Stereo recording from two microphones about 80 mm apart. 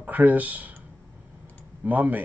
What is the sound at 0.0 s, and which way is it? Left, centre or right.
Speech, right.